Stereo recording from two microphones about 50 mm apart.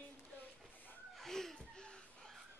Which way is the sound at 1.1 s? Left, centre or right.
Centre.